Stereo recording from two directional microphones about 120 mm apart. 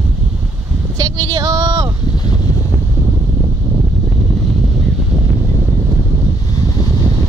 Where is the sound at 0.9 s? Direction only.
35° right (ahead or behind).